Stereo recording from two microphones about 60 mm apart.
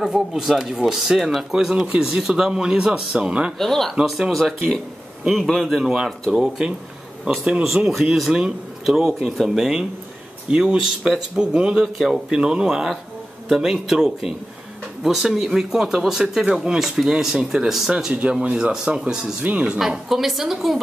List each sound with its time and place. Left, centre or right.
0.0 s speech: centre
3.5 s a woman's voice: centre
6.6 s speech: centre
19.4 s speech: centre
19.8 s a woman's voice: centre